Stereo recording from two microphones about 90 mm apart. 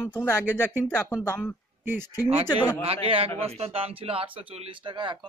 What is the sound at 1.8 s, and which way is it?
Speech, 25° right (ahead or behind).